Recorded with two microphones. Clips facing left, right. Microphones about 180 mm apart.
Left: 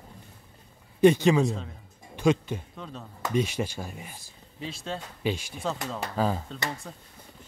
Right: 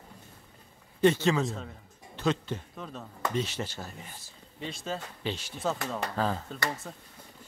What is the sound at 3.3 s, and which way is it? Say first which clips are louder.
Speech: left 8 dB; 10° left (ahead or behind).